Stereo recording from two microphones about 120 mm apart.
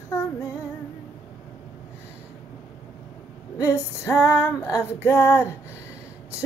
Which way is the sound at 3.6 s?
25° left (ahead or behind).